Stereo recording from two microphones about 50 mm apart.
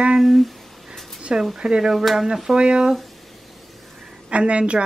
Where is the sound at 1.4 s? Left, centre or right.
Centre.